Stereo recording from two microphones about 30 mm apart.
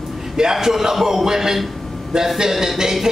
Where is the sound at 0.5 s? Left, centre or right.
Centre.